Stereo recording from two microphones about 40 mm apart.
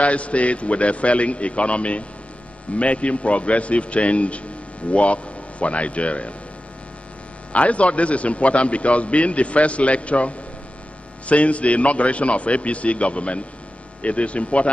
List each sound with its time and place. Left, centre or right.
0.0 s a man's voice: left
7.5 s a man's voice: left